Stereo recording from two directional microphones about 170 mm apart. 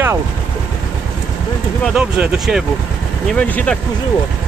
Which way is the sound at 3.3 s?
10° left (ahead or behind).